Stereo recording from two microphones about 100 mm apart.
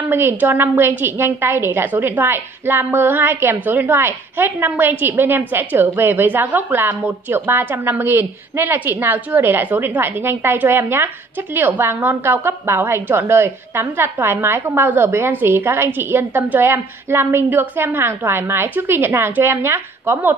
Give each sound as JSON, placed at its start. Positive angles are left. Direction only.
{"t": 0.1, "sound": "a woman's voice", "side_deg": -20}